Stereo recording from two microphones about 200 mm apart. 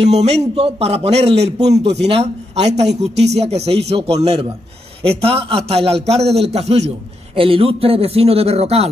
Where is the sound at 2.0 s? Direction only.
30° right (ahead or behind).